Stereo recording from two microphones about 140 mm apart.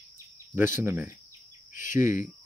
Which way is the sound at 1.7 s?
65° left (ahead or behind).